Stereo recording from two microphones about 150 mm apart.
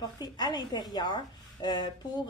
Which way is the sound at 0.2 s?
25° left (ahead or behind).